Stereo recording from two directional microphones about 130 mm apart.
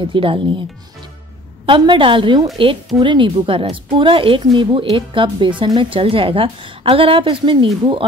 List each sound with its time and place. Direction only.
0.0 s speech: 40° right (ahead or behind)
1.7 s a woman's voice: 40° right (ahead or behind)